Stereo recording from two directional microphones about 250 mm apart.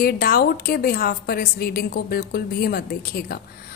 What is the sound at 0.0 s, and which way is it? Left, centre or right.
A woman's voice, left.